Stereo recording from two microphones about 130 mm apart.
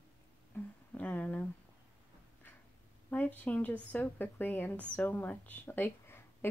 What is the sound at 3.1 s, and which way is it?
Speech, 10° left (ahead or behind).